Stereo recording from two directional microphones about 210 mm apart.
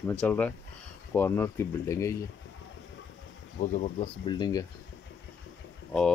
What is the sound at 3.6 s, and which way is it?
Speech, 35° left (ahead or behind).